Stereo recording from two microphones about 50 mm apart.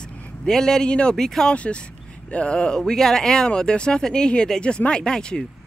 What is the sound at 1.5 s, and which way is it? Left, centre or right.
Speech, left.